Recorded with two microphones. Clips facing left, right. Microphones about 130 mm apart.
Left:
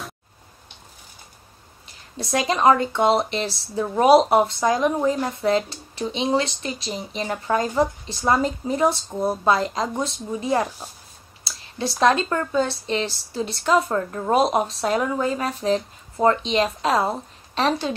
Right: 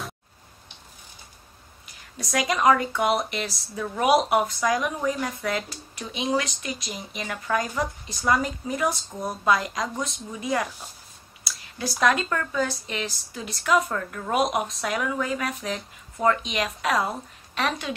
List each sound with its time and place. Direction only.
2.1 s speech: 30° left (ahead or behind)